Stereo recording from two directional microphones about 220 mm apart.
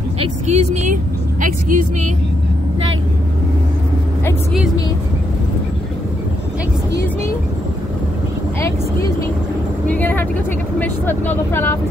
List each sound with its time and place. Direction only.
0.2 s speech: 30° right (ahead or behind)
9.8 s speech: 10° left (ahead or behind)